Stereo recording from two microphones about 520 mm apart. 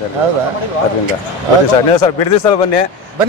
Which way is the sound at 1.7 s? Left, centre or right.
Left.